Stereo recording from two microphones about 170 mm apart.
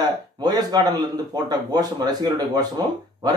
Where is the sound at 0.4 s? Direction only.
25° right (ahead or behind).